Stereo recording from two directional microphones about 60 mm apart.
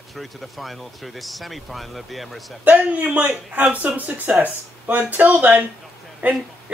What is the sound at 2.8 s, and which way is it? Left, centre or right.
A woman's voice, right.